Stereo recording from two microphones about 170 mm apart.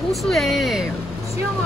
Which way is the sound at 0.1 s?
Centre (ahead or behind).